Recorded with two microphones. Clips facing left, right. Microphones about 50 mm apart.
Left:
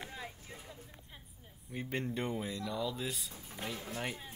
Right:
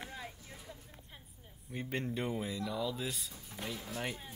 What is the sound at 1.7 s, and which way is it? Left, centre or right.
Speech, centre.